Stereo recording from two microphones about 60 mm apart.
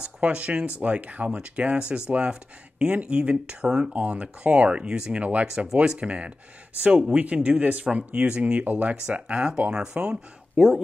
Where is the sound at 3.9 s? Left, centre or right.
Right.